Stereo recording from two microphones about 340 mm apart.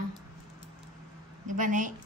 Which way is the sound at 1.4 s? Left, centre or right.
Right.